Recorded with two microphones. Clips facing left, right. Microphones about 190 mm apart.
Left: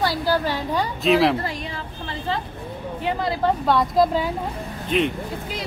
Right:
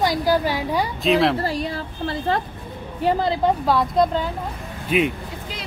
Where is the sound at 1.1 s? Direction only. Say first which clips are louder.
Left 1 dB; centre (ahead or behind).